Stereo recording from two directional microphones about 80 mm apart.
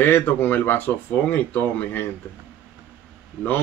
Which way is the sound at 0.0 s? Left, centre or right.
Left.